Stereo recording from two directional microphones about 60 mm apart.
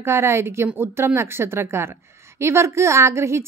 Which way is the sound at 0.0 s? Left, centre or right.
Right.